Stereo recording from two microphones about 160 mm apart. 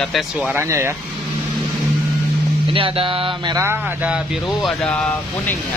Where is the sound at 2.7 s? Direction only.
35° right (ahead or behind).